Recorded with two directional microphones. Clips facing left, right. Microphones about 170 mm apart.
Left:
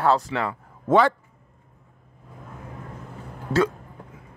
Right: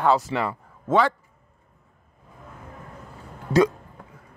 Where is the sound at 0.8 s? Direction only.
55° left (ahead or behind).